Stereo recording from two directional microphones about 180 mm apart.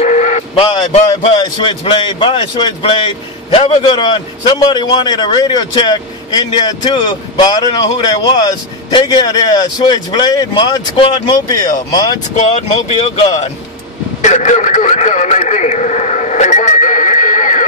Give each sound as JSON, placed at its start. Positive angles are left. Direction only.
{"t": 0.0, "sound": "vehicle", "side_deg": 40}
{"t": 0.7, "sound": "a man's voice", "side_deg": 25}
{"t": 12.4, "sound": "a man's voice", "side_deg": 40}